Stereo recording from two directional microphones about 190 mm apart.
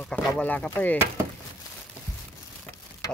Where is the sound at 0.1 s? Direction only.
10° left (ahead or behind).